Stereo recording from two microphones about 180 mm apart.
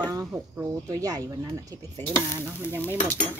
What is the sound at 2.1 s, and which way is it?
Stir, 10° left (ahead or behind).